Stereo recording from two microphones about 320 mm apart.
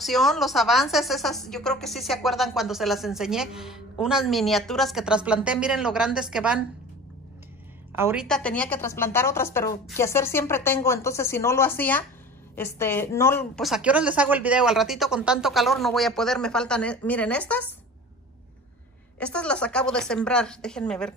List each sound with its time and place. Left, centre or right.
0.0 s a woman's voice: centre
7.9 s a woman's voice: centre
19.1 s a woman's voice: centre